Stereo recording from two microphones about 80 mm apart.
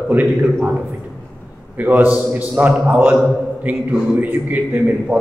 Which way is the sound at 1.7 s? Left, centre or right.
Right.